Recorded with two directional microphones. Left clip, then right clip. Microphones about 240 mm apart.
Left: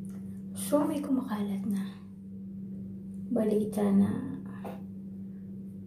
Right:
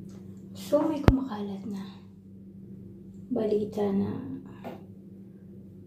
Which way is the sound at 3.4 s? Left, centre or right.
Centre.